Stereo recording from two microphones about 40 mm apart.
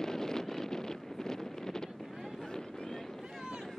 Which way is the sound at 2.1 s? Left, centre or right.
Centre.